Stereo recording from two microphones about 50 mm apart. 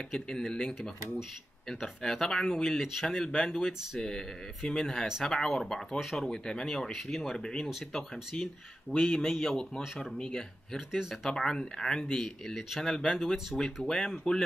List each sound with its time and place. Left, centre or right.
0.1 s speech: centre
8.9 s a man's voice: left
9.3 s a man's voice: centre
9.6 s speech: centre
10.9 s speech: centre
11.2 s speech: centre